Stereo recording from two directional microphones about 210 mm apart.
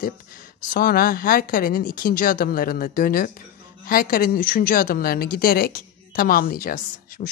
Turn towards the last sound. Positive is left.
turn(degrees=45)  # may be behind; listen again after turning